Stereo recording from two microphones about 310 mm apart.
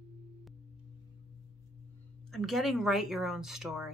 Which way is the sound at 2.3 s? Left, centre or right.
Centre.